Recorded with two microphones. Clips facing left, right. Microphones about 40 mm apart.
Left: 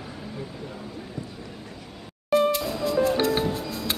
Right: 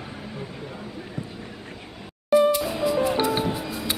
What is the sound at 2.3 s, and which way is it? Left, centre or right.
Music, centre.